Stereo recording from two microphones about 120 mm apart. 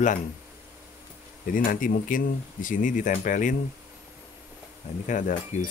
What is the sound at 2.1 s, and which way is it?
Speech, 90° left.